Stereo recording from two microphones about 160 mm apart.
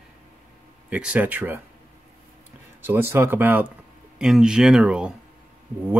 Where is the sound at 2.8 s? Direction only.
15° right (ahead or behind).